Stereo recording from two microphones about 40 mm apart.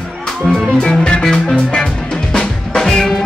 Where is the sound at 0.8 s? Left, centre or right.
Left.